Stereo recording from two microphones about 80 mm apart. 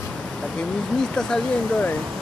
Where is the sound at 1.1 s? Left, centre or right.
Centre.